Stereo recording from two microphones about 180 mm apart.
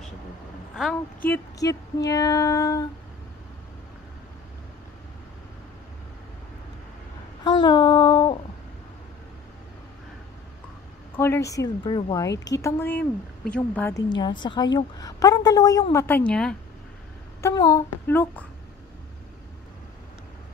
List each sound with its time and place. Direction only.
0.7 s a woman's voice: 5° left (ahead or behind)
7.4 s child singing: 25° left (ahead or behind)
11.1 s a woman's voice: 15° left (ahead or behind)
12.6 s a woman's voice: 10° left (ahead or behind)
13.9 s a woman's voice: 25° left (ahead or behind); by 16.5 s 5° left (ahead or behind)
17.4 s a woman's voice: 20° left (ahead or behind)